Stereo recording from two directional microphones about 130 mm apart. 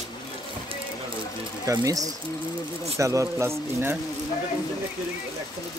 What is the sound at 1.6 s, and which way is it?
A man's voice, 25° right (ahead or behind).